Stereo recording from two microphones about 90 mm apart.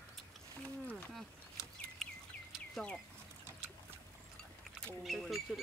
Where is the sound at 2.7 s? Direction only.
10° left (ahead or behind).